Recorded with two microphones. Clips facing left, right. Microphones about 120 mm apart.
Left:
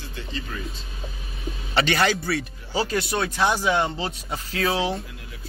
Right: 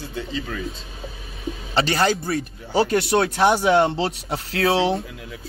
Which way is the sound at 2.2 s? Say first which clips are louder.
Right 2 dB; 45° right (ahead or behind).